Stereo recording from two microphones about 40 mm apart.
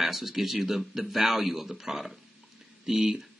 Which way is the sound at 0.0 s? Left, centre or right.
Centre.